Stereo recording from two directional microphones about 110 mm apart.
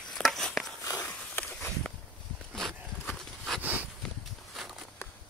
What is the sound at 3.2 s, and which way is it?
Horse, centre (ahead or behind).